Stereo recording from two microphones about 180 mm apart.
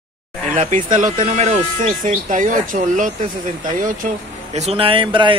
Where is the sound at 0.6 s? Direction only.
45° right (ahead or behind).